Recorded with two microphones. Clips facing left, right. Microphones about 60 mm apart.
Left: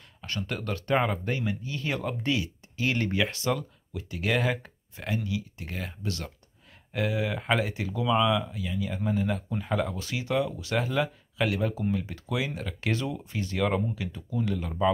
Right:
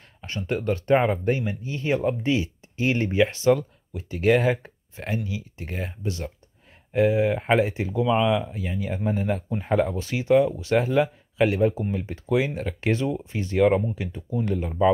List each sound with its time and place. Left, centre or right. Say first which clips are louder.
0.2 s speech: right 5 dB; right